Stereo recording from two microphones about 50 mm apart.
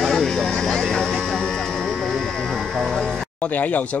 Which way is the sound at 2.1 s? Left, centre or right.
Centre.